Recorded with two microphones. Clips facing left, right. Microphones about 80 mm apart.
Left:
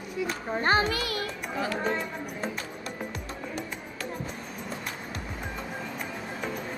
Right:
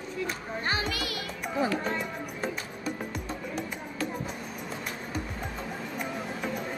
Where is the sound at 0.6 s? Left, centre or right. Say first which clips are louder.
Left 7 dB; left.